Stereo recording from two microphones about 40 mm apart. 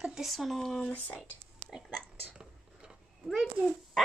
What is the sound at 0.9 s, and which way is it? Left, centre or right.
Speech, left.